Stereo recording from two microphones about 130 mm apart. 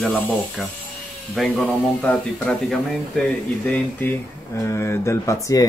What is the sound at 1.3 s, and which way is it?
Speech, 5° left (ahead or behind).